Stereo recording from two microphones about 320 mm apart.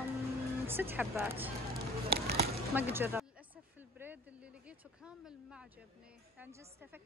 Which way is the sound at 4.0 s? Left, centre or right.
Centre.